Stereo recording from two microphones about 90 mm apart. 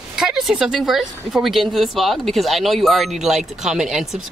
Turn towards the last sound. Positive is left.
turn(degrees=-5)  # may be behind; listen again after turning